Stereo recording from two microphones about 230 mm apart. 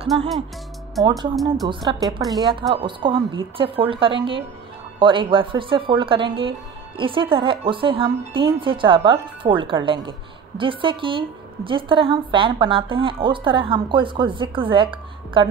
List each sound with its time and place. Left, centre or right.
0.1 s a woman's voice: right
1.3 s speech: centre
1.7 s a woman's voice: centre